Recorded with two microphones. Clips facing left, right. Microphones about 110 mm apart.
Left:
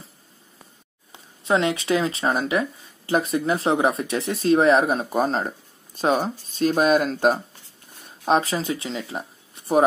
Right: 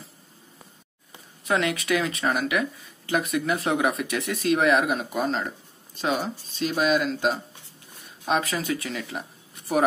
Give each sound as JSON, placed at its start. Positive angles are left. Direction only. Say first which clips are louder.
{"t": 1.1, "sound": "speech", "louder": "left 4 dB", "side_deg": 25}
{"t": 8.3, "sound": "speech", "louder": "left 4 dB", "side_deg": 30}